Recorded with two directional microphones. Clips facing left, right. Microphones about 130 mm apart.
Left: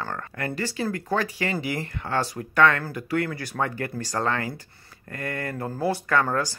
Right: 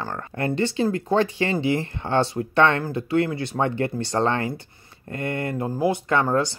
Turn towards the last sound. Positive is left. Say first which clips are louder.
# right 3 dB
turn(degrees=-25)  # may be behind; listen again after turning